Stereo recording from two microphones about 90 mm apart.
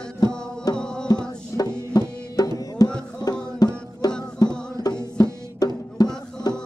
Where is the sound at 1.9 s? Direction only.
40° left (ahead or behind).